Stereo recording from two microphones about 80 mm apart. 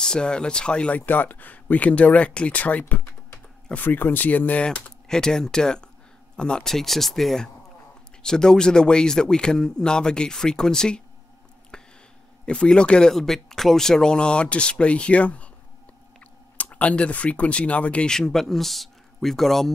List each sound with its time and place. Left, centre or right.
0.0 s speech: centre
3.8 s speech: left; by 11.0 s centre
11.7 s a sound: centre
12.4 s speech: centre
16.5 s speech: centre